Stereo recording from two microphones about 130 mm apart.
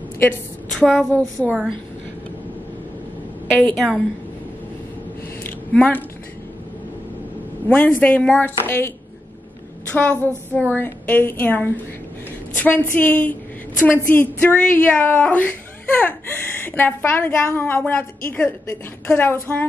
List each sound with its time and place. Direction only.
0.7 s a woman's voice: 5° left (ahead or behind)
1.1 s a woman's voice: 15° right (ahead or behind)
3.7 s a woman's voice: centre (ahead or behind)
5.4 s a sound: 10° left (ahead or behind)
7.6 s a woman's voice: 15° left (ahead or behind)
9.9 s a woman's voice: 10° left (ahead or behind)